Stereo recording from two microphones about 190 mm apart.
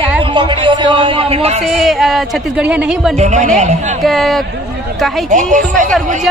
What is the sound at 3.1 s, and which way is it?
Speech, 35° right (ahead or behind).